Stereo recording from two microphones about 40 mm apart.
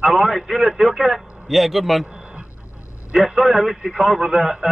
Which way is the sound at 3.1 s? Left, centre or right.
Centre.